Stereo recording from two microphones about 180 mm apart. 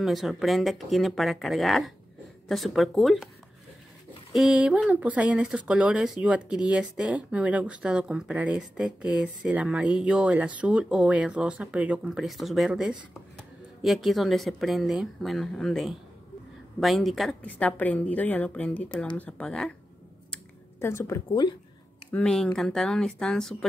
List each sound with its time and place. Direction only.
0.0 s speech: centre (ahead or behind)
4.3 s a woman's voice: 5° right (ahead or behind)
20.8 s a woman's voice: 15° left (ahead or behind)
21.3 s speech: 25° left (ahead or behind)
22.1 s speech: 5° left (ahead or behind)